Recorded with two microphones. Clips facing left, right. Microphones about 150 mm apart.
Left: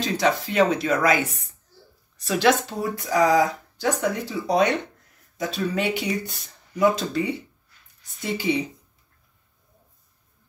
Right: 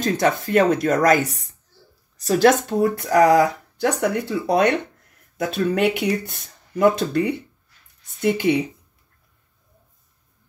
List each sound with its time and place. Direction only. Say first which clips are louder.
0.0 s speech: right 3 dB; 50° right (ahead or behind)
3.0 s speech: right 3 dB; 65° right (ahead or behind)